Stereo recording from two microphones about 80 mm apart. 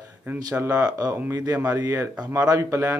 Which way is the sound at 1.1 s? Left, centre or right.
Right.